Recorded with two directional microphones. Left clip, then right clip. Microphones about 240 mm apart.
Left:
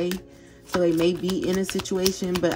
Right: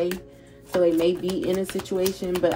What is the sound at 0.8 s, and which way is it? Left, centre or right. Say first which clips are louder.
Speech: right 2 dB; left.